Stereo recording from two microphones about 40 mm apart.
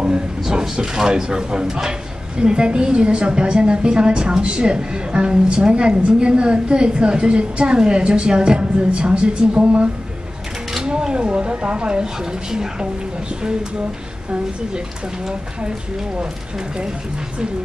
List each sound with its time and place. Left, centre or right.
0.0 s speech: centre